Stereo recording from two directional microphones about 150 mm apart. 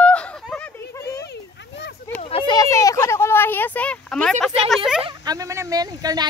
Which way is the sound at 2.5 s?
20° left (ahead or behind).